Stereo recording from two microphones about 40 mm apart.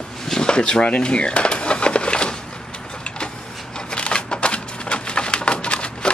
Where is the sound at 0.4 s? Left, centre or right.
Left.